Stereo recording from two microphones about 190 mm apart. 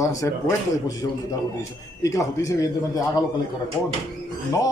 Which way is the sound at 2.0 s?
15° left (ahead or behind).